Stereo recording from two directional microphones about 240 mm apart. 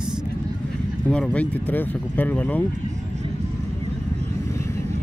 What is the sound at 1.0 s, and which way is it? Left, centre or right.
Speech, centre.